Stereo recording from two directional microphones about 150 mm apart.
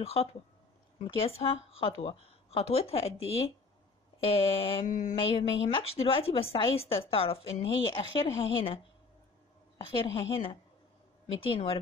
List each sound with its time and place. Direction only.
0.1 s speech: 40° left (ahead or behind)
4.8 s mantra: 55° left (ahead or behind)
5.2 s speech: 35° left (ahead or behind)
9.8 s speech: 35° left (ahead or behind)